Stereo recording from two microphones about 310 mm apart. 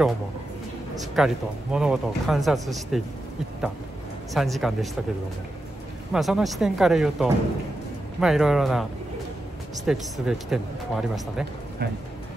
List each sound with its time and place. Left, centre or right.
1.1 s speech: centre
4.3 s speech: centre
6.1 s speech: centre
9.8 s speech: centre
11.8 s speech: right